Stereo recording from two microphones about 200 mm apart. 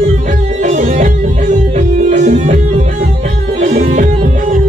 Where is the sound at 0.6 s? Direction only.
40° right (ahead or behind).